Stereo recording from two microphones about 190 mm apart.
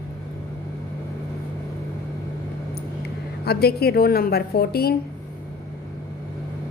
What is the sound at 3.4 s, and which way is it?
A woman's voice, 55° left (ahead or behind).